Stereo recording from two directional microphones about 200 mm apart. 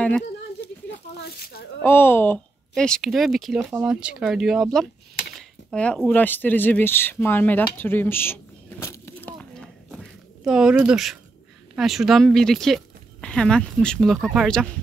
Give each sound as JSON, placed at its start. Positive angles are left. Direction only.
{"t": 1.1, "sound": "speech", "side_deg": 50}
{"t": 1.8, "sound": "speech", "side_deg": 10}